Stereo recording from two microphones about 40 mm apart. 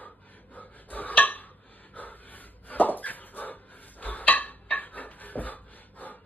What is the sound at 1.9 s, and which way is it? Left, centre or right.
Dog, left.